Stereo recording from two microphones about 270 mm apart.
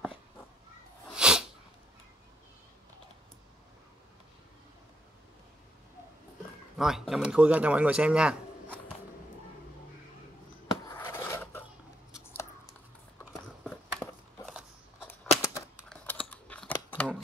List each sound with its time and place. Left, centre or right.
1.1 s sneeze: centre
6.8 s speech: centre
10.9 s a sound: centre
12.1 s chewing: centre
13.2 s a sound: centre
15.0 s scissors: centre